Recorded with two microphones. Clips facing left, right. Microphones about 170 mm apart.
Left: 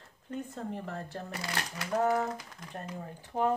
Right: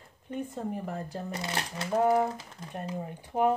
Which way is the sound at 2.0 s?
10° right (ahead or behind).